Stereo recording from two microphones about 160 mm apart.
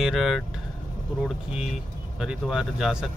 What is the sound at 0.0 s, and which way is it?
Speech, centre (ahead or behind).